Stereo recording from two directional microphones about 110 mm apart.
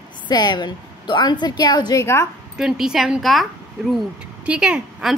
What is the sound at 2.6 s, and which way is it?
Speech, 5° right (ahead or behind).